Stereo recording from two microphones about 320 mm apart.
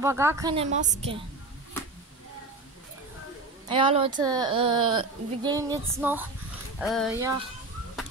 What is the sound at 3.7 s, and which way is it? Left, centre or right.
A woman's voice, centre.